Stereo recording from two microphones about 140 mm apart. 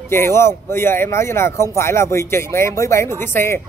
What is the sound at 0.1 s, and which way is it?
A man's voice, 20° left (ahead or behind).